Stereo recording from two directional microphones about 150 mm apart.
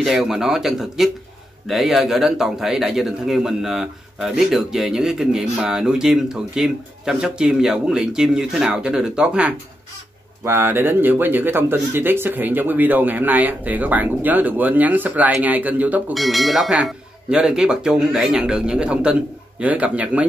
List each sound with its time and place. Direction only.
0.0 s a man's voice: centre (ahead or behind)
16.1 s a man's voice: centre (ahead or behind)